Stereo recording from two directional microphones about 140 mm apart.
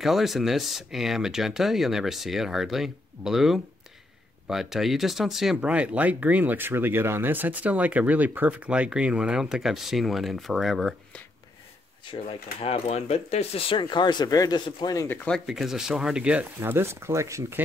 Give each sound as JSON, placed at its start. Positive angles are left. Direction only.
{"t": 0.0, "sound": "speech", "side_deg": 0}
{"t": 12.0, "sound": "speech", "side_deg": 35}
{"t": 15.0, "sound": "speech", "side_deg": 5}
{"t": 16.5, "sound": "speech", "side_deg": -15}